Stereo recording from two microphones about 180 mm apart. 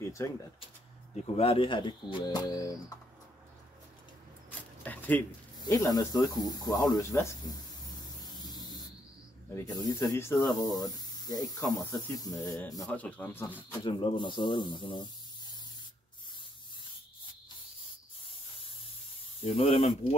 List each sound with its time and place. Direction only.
0.2 s speech: 15° left (ahead or behind)
1.1 s speech: 35° left (ahead or behind)
4.5 s dog: 10° left (ahead or behind)
5.6 s speech: 20° left (ahead or behind)
9.6 s speech: 20° left (ahead or behind)
12.8 s speech: 10° left (ahead or behind)
13.8 s speech: 25° left (ahead or behind)
19.4 s speech: 35° left (ahead or behind)